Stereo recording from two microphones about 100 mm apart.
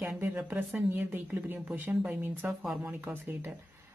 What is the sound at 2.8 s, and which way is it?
Speech, 20° right (ahead or behind).